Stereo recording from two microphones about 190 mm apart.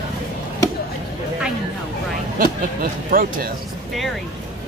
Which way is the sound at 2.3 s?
50° right (ahead or behind).